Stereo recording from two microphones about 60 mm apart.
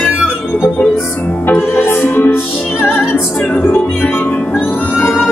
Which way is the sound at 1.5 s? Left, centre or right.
Left.